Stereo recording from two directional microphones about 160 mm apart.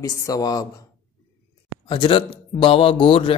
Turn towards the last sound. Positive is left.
turn(degrees=35)  # may be behind; listen again after turning